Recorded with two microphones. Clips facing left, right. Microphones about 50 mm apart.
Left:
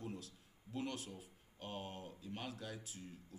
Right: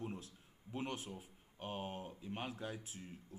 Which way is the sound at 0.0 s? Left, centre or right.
Right.